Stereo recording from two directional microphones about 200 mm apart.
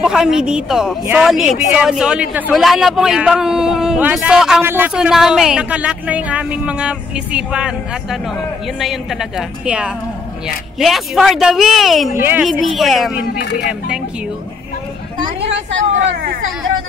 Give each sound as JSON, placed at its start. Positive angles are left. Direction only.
{"t": 0.0, "sound": "a woman's voice", "side_deg": -5}
{"t": 12.1, "sound": "a woman's voice", "side_deg": -10}
{"t": 13.3, "sound": "speech", "side_deg": 55}